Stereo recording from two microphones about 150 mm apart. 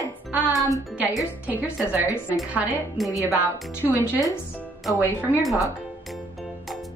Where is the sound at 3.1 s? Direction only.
20° left (ahead or behind).